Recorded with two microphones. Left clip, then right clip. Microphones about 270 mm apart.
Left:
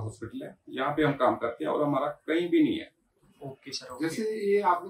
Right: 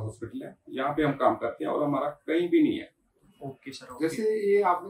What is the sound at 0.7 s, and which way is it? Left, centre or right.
Speech, centre.